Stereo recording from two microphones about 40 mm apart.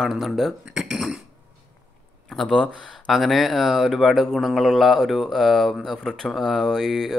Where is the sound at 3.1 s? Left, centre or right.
Centre.